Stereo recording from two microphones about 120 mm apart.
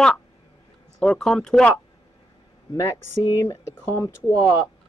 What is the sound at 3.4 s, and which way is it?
Speech, 25° left (ahead or behind).